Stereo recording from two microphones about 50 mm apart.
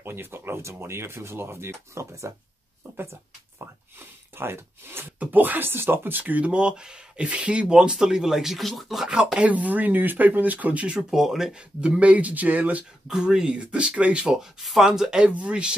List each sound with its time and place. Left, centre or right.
0.0 s speech: right
3.0 s a sound: right
4.4 s speech: right
5.0 s speech: right
6.5 s speech: centre
9.1 s speech: centre
11.0 s speech: centre
11.5 s speech: centre; by 12.8 s right
13.2 s speech: centre
13.7 s speech: right
14.6 s speech: centre
14.9 s speech: centre